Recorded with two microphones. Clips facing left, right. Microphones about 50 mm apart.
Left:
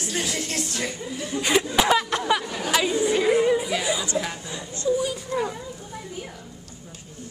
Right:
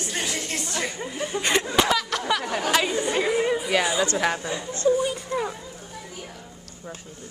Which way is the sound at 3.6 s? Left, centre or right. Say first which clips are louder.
Right 3 dB; right.